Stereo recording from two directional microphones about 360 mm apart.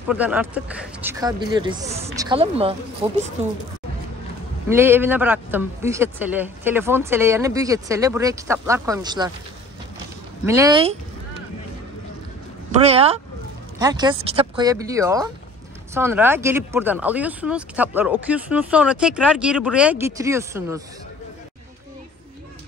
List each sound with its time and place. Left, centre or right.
0.1 s speech: centre
4.6 s speech: centre
10.4 s speech: centre
12.8 s speech: centre